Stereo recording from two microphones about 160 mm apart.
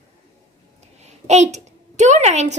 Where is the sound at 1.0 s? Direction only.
45° right (ahead or behind).